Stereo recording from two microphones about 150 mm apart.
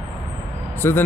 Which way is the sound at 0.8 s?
15° left (ahead or behind).